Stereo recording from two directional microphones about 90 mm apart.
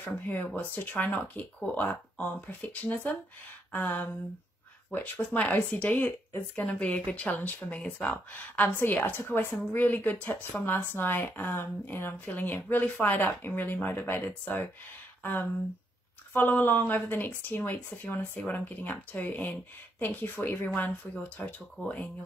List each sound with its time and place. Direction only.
0.6 s speech: 20° left (ahead or behind)
16.3 s speech: 20° left (ahead or behind)